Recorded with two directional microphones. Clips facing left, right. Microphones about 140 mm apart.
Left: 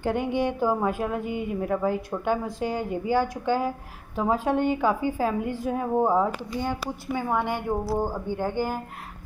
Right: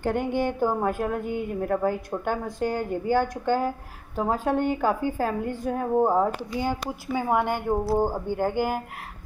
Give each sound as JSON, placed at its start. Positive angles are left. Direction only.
{"t": 0.0, "sound": "a woman's voice", "side_deg": 0}
{"t": 7.7, "sound": "speech", "side_deg": -25}
{"t": 8.3, "sound": "speech", "side_deg": -10}